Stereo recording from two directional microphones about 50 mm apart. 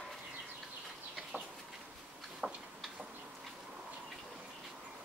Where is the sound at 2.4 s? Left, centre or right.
Centre.